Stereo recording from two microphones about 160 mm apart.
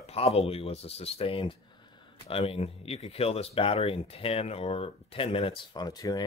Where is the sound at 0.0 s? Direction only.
40° left (ahead or behind).